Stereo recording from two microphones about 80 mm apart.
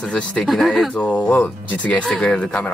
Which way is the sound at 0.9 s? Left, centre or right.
Centre.